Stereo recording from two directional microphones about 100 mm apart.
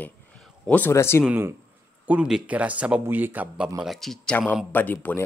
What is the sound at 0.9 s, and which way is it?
Speech, 25° left (ahead or behind).